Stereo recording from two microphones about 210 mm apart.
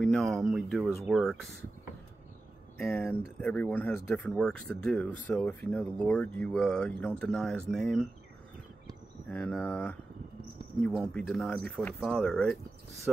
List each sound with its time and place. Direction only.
0.0 s speech: centre (ahead or behind)
2.8 s speech: 10° left (ahead or behind)
9.3 s speech: 5° left (ahead or behind)